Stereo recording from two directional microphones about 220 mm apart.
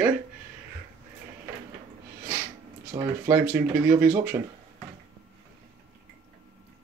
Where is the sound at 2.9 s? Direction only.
10° right (ahead or behind).